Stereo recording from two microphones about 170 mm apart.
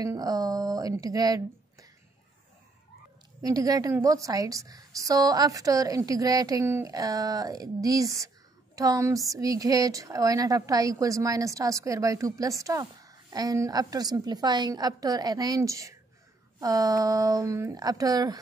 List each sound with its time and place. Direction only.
0.0 s speech: 20° right (ahead or behind)
3.4 s a woman's voice: 20° right (ahead or behind)